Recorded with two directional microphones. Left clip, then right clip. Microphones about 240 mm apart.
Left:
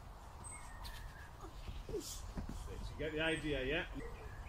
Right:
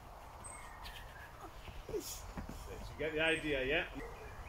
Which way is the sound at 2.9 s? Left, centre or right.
Centre.